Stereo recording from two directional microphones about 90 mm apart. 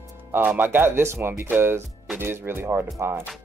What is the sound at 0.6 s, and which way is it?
Speech, 20° right (ahead or behind).